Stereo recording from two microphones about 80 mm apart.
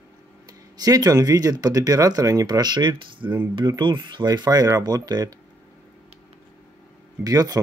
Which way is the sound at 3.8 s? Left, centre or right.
Right.